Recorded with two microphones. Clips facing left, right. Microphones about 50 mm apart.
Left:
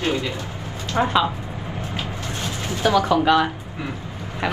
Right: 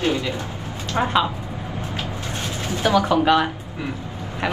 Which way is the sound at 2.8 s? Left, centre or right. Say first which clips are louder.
Even; right.